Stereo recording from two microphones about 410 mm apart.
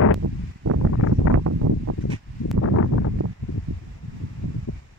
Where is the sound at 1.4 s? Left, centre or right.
Right.